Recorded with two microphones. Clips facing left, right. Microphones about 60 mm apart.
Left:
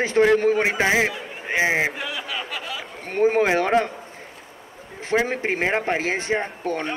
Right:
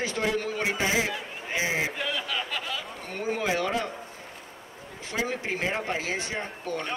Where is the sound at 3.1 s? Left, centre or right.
Left.